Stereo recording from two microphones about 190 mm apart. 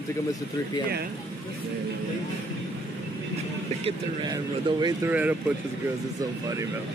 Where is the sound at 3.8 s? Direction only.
25° right (ahead or behind).